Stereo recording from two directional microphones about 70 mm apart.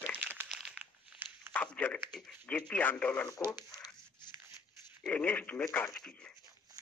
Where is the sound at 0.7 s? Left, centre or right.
Right.